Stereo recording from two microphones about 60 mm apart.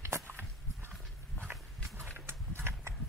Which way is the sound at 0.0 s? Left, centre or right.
Right.